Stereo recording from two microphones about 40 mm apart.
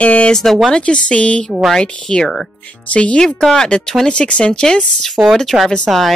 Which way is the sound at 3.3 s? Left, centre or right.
Centre.